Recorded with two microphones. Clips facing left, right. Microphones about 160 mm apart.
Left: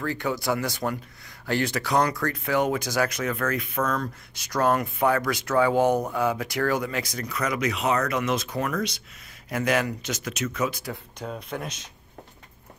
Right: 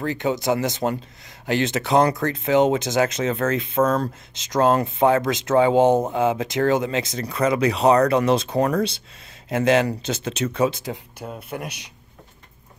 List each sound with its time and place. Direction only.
0.0 s speech: 20° right (ahead or behind)
11.1 s speech: 5° right (ahead or behind)